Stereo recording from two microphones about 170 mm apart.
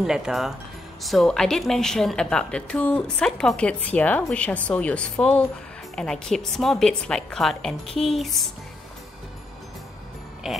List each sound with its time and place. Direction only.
0.0 s a woman's voice: 5° right (ahead or behind)
10.4 s a woman's voice: centre (ahead or behind)